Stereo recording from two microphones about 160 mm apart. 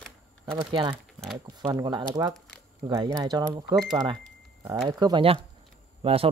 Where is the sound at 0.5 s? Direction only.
30° right (ahead or behind).